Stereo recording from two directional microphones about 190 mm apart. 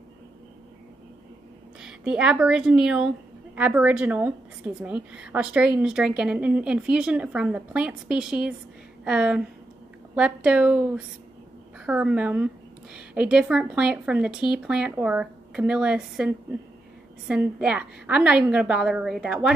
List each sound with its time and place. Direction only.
1.8 s a woman's voice: 5° right (ahead or behind)